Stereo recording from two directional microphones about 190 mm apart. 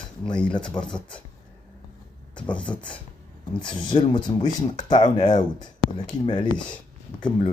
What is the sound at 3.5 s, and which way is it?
A man's voice, 25° left (ahead or behind).